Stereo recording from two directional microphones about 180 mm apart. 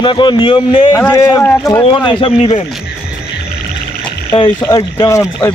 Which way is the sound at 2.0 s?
30° left (ahead or behind).